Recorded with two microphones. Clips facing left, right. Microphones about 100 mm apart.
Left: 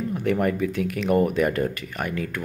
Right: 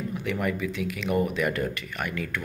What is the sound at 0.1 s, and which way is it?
Speech, 45° left (ahead or behind).